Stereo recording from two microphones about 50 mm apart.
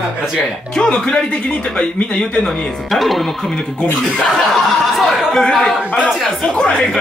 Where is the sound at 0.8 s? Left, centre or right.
Centre.